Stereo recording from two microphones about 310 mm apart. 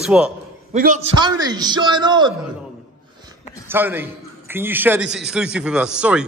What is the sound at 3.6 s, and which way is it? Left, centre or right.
A man's voice, centre.